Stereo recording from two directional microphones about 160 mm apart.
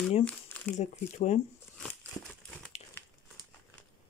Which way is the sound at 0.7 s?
45° left (ahead or behind).